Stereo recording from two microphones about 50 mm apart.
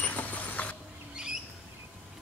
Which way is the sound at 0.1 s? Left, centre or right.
Left.